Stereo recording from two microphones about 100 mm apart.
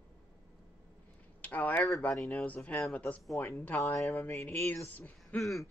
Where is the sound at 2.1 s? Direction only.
5° left (ahead or behind).